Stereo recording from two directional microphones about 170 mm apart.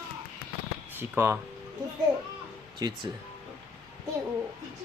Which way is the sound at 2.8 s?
20° right (ahead or behind).